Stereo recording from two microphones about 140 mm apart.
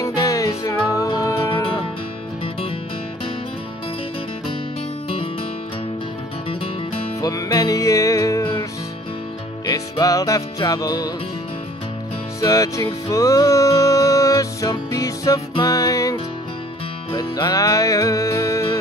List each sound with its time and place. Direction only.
0.0 s music: 25° left (ahead or behind)
7.2 s music: 25° left (ahead or behind)
9.7 s music: 25° left (ahead or behind)
12.4 s music: 25° left (ahead or behind)